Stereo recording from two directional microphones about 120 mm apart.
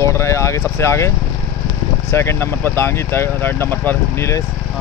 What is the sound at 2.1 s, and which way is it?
Speech, 20° left (ahead or behind).